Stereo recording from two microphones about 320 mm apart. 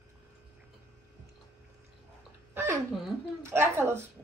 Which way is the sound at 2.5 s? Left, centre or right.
Centre.